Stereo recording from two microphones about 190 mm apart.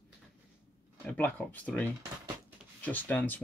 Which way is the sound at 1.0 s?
10° left (ahead or behind).